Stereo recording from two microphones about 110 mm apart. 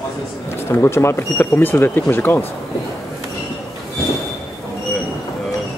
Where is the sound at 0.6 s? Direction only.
25° left (ahead or behind).